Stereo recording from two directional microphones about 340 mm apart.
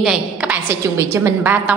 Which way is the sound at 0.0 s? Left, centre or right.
Centre.